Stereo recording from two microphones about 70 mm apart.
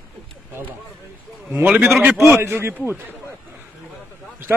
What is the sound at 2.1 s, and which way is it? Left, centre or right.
Speech, right.